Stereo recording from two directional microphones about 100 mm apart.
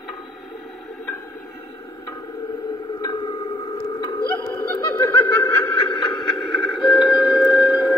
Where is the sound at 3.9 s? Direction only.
50° left (ahead or behind).